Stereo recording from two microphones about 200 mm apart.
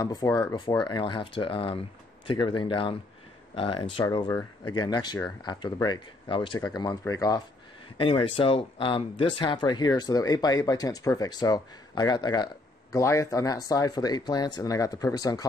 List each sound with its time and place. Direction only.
0.0 s speech: 20° left (ahead or behind)